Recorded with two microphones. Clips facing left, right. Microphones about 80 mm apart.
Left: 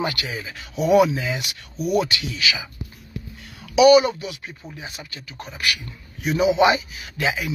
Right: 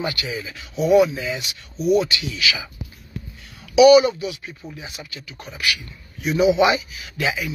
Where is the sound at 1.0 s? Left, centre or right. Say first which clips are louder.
Even; left.